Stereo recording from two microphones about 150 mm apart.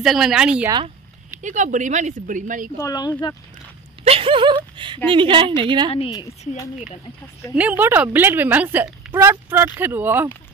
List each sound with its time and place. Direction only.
0.0 s speech: centre (ahead or behind)
1.4 s speech: 55° right (ahead or behind)
2.8 s speech: 25° left (ahead or behind)
4.0 s speech: 40° right (ahead or behind)
5.9 s speech: 40° left (ahead or behind)
7.5 s speech: 10° right (ahead or behind)